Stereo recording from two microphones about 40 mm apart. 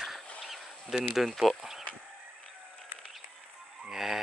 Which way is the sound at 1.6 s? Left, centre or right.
Centre.